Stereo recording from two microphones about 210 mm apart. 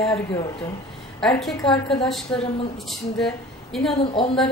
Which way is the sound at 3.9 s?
30° left (ahead or behind).